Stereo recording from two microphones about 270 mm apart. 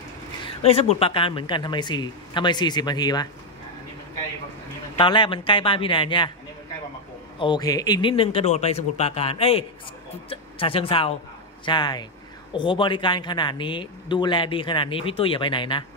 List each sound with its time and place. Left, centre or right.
0.5 s speech: left
4.9 s a man's voice: centre
7.3 s a man's voice: centre